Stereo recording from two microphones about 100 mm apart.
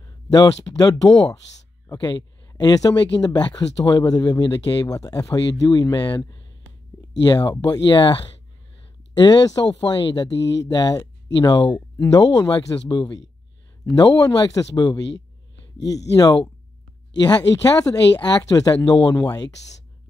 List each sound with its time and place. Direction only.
0.0 s speech: 40° left (ahead or behind)
17.8 s speech: 40° left (ahead or behind)